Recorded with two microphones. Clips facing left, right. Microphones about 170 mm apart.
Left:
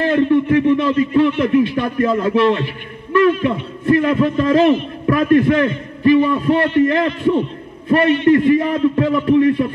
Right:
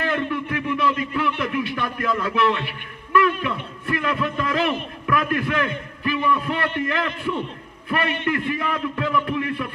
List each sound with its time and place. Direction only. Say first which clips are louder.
0.1 s a man's voice: left 12 dB; 30° left (ahead or behind)